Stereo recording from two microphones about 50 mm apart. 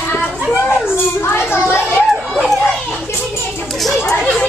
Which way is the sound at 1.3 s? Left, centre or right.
Left.